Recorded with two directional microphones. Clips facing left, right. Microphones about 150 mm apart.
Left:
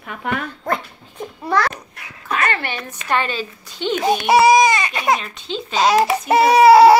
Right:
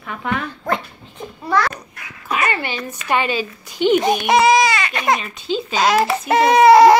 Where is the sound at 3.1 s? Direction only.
10° right (ahead or behind).